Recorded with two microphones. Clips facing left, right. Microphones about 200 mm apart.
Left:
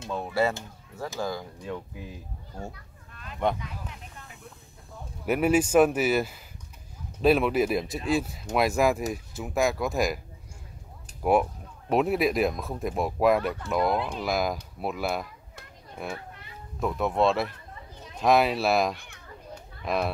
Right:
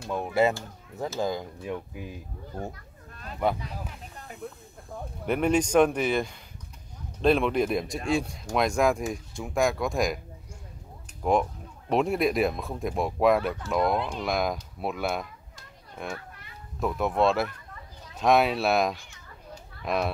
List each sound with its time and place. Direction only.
0.1 s speech: 15° right (ahead or behind)
2.7 s children playing: 40° right (ahead or behind)
5.2 s speech: 5° left (ahead or behind)
11.2 s speech: 10° left (ahead or behind)
18.9 s children playing: 60° left (ahead or behind)
19.8 s speech: centre (ahead or behind)